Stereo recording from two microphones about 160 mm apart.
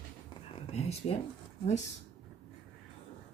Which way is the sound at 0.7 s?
40° left (ahead or behind).